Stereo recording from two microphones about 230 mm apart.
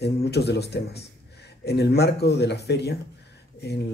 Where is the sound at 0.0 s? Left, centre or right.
Left.